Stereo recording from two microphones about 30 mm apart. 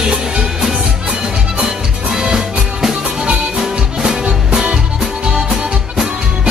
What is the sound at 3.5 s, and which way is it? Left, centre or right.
Music, right.